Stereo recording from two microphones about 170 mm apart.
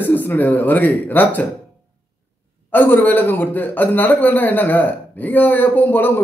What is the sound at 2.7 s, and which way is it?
A man's voice, 10° left (ahead or behind).